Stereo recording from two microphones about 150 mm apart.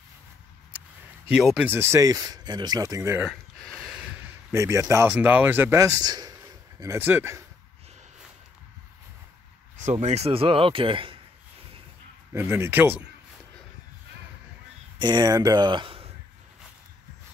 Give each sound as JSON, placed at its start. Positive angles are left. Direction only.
{"t": 1.3, "sound": "speech", "side_deg": -5}
{"t": 1.7, "sound": "speech", "side_deg": -15}
{"t": 3.3, "sound": "speech", "side_deg": 0}
{"t": 9.8, "sound": "speech", "side_deg": -50}
{"t": 12.3, "sound": "speech", "side_deg": -15}
{"t": 15.0, "sound": "speech", "side_deg": -30}